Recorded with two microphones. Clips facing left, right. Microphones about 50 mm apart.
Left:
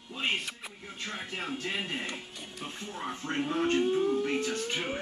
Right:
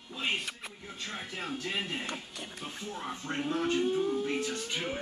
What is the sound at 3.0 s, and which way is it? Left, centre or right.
Speech, centre.